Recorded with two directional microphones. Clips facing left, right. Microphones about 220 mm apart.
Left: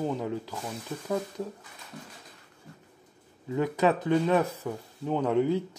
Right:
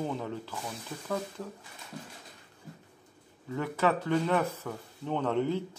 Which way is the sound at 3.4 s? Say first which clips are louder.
Left 4 dB; 15° left (ahead or behind).